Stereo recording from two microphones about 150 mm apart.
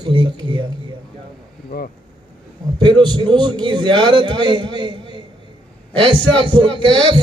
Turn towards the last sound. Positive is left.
turn(degrees=-30)  # may be behind; listen again after turning